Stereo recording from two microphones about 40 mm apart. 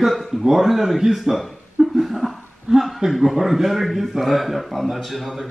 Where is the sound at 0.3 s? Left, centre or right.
Centre.